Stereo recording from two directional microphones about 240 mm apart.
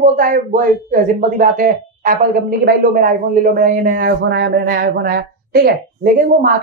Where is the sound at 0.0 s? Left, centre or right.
Right.